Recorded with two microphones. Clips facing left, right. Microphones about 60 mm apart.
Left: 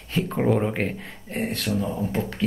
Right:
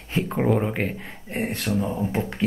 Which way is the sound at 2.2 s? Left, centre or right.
Right.